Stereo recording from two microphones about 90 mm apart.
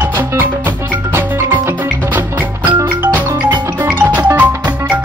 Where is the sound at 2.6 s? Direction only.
20° right (ahead or behind).